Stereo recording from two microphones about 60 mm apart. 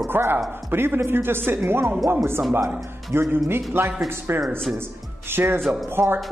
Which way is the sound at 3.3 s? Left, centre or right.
Right.